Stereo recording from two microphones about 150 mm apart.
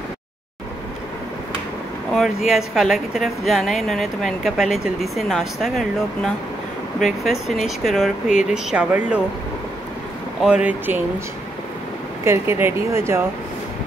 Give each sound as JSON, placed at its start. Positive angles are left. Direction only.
{"t": 2.1, "sound": "a woman's voice", "side_deg": 0}
{"t": 10.4, "sound": "speech", "side_deg": -10}
{"t": 12.3, "sound": "speech", "side_deg": -15}